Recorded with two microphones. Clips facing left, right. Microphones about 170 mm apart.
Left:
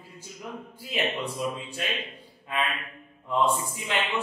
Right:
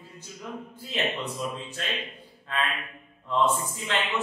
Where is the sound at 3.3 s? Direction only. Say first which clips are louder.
Even; 10° left (ahead or behind).